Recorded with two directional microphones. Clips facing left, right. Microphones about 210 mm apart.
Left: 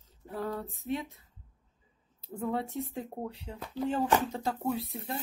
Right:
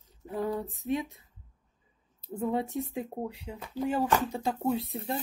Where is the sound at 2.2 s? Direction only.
15° right (ahead or behind).